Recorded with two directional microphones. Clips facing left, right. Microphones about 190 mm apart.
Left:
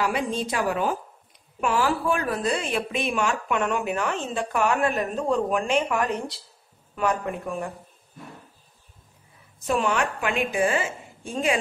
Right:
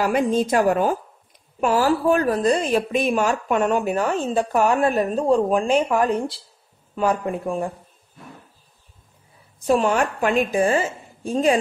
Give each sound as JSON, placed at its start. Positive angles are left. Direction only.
{"t": 0.0, "sound": "a woman's voice", "side_deg": -45}
{"t": 9.7, "sound": "a woman's voice", "side_deg": -35}